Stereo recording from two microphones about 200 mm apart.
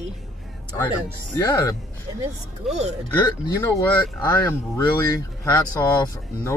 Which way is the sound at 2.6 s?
Centre (ahead or behind).